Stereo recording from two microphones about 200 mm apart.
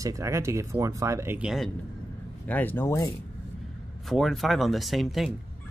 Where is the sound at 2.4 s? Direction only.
10° left (ahead or behind).